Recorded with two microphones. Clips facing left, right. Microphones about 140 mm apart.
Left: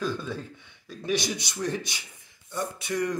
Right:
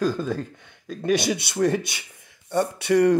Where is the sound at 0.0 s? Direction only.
40° right (ahead or behind).